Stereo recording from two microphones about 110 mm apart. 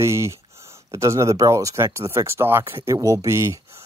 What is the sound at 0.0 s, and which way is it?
Speech, 25° right (ahead or behind).